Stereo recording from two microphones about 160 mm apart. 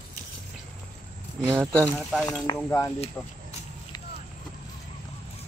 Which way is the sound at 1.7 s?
5° left (ahead or behind).